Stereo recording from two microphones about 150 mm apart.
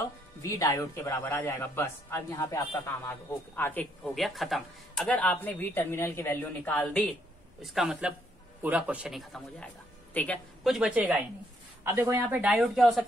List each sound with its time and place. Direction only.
0.4 s speech: 20° left (ahead or behind)
4.0 s speech: centre (ahead or behind)
7.6 s a man's voice: centre (ahead or behind)
10.6 s a woman's voice: centre (ahead or behind)